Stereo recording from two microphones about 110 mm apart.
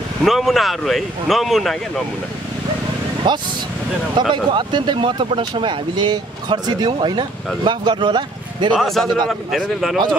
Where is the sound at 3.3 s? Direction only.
45° right (ahead or behind).